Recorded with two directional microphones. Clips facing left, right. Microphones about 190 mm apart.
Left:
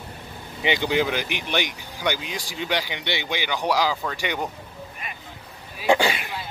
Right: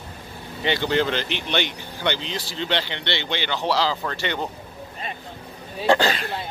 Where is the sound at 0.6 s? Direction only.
15° left (ahead or behind).